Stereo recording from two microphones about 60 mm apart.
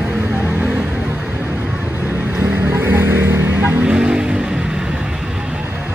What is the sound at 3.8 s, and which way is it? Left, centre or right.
Vehicle, centre.